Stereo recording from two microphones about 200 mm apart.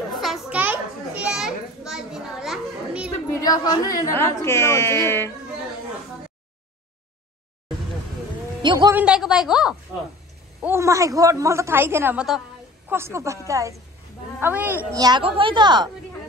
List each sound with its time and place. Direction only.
0.2 s children playing: centre (ahead or behind)
3.3 s speech: 20° left (ahead or behind)
8.6 s speech: 20° right (ahead or behind)
9.0 s a woman's voice: 5° right (ahead or behind)
15.0 s speech: 20° right (ahead or behind)